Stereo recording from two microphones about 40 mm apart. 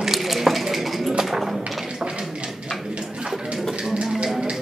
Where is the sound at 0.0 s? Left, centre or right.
Centre.